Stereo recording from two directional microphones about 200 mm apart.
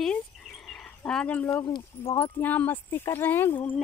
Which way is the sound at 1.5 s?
25° left (ahead or behind).